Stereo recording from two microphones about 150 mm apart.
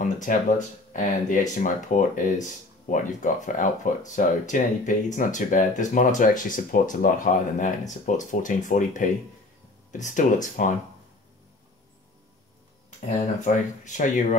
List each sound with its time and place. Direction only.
0.0 s speech: 60° left (ahead or behind)
13.4 s speech: 55° left (ahead or behind)